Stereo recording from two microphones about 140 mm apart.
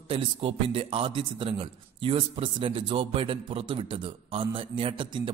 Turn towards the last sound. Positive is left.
turn(degrees=-35)  # may be behind; listen again after turning